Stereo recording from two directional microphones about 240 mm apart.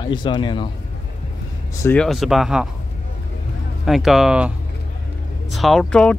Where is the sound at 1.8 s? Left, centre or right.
Centre.